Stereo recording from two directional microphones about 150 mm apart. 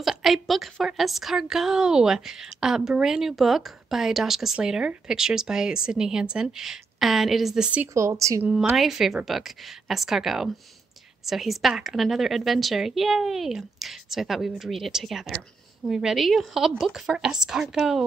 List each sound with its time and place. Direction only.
0.0 s a woman's voice: centre (ahead or behind)
7.9 s speech: 20° right (ahead or behind)
8.5 s a woman's voice: 5° right (ahead or behind)